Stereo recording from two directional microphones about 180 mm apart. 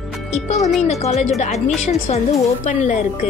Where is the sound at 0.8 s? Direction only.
35° left (ahead or behind).